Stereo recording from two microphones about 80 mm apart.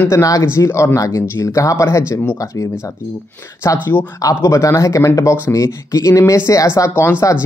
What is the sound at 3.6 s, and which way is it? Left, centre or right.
Speech, left.